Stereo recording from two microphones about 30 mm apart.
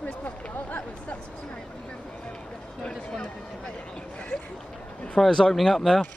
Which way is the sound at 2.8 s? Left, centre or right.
Left.